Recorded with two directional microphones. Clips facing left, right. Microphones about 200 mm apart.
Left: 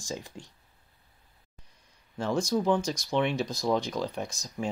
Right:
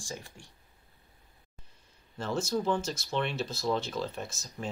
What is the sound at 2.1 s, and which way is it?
Speech, 15° left (ahead or behind).